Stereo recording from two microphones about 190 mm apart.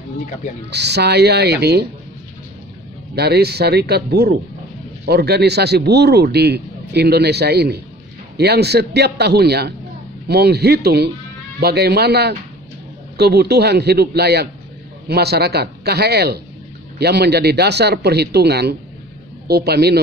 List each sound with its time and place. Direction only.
0.7 s speech: 60° right (ahead or behind)
3.2 s speech: 60° right (ahead or behind)